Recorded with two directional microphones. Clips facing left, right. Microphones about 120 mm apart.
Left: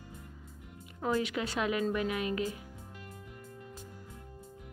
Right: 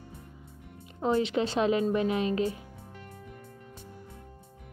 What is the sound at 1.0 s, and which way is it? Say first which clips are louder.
Speech: right 5 dB; 25° right (ahead or behind).